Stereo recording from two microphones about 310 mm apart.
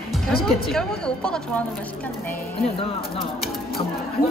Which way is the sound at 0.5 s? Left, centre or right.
Centre.